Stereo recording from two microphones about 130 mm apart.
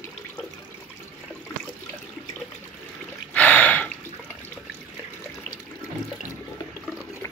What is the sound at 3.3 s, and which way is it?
Gasp, 10° left (ahead or behind).